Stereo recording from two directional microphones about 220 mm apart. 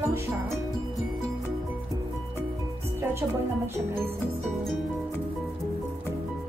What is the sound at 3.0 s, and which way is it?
Speech, 10° right (ahead or behind).